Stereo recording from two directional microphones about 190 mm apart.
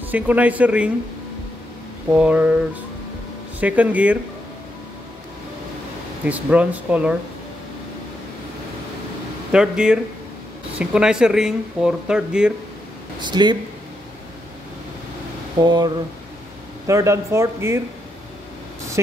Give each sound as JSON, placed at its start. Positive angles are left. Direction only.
{"t": 0.0, "sound": "speech", "side_deg": -10}
{"t": 2.1, "sound": "speech", "side_deg": -5}
{"t": 6.2, "sound": "speech", "side_deg": -10}
{"t": 9.5, "sound": "speech", "side_deg": -5}
{"t": 13.2, "sound": "speech", "side_deg": -25}
{"t": 15.6, "sound": "speech", "side_deg": -20}